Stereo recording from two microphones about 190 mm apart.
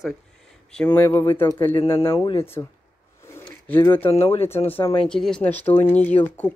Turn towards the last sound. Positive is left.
turn(degrees=10)  # may be behind; listen again after turning